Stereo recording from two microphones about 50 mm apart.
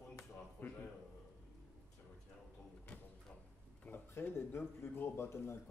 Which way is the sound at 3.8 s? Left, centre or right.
Left.